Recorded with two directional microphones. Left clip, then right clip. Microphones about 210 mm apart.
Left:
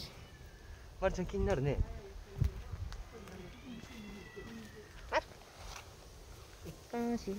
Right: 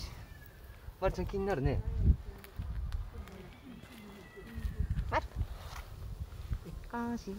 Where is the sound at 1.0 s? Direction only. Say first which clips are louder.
Right 1 dB; 40° right (ahead or behind).